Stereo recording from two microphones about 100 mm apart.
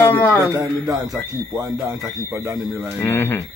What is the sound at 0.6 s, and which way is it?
A man's voice, 35° right (ahead or behind).